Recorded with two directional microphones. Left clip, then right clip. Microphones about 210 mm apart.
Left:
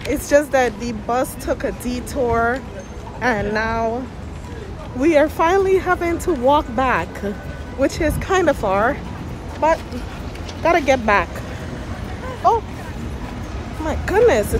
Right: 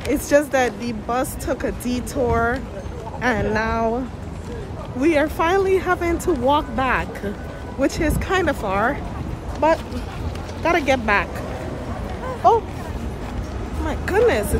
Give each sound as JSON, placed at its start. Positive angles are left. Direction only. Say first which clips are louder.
{"t": 0.1, "sound": "speech", "louder": "left 2 dB", "side_deg": -15}
{"t": 5.0, "sound": "speech", "louder": "left 3 dB", "side_deg": -5}
{"t": 9.6, "sound": "speech", "louder": "left 1 dB", "side_deg": -15}
{"t": 13.8, "sound": "speech", "louder": "left 3 dB", "side_deg": -5}